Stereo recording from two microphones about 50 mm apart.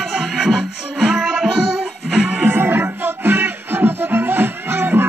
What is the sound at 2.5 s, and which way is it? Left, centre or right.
Music, right.